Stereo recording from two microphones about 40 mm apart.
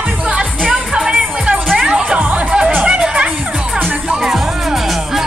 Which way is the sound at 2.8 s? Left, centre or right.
Right.